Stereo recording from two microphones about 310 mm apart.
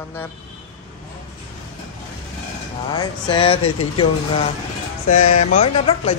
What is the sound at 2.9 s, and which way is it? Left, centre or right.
Speech, centre.